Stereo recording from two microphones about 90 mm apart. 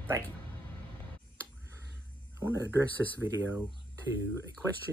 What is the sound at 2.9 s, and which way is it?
Speech, 20° left (ahead or behind).